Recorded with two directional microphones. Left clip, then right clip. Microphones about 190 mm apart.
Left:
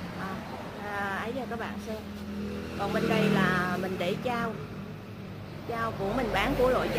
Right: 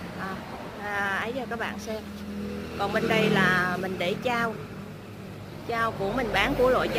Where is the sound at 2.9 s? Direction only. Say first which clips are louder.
Right 3 dB; 5° right (ahead or behind).